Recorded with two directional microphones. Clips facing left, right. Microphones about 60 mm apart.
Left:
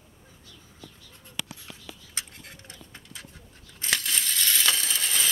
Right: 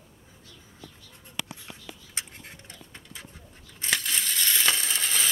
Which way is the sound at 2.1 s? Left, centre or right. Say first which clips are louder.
Right 1 dB; right.